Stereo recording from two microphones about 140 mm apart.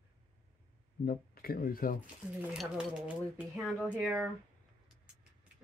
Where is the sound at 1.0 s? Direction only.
90° left.